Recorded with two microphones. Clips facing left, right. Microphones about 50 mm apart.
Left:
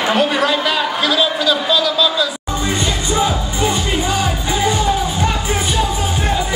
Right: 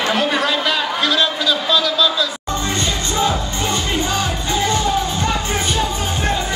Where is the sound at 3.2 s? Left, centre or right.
Centre.